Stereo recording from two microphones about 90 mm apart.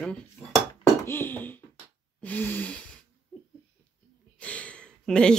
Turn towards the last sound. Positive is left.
turn(degrees=10)  # may be behind; listen again after turning